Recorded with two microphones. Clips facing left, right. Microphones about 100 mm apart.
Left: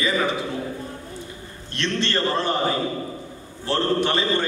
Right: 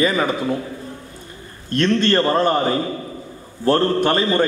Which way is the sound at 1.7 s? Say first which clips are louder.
Right 8 dB; 45° right (ahead or behind).